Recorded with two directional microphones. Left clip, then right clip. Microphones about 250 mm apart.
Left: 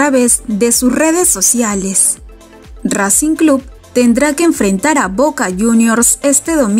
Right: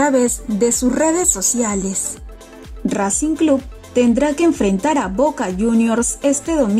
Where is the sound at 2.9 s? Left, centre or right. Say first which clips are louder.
Left 5 dB; centre.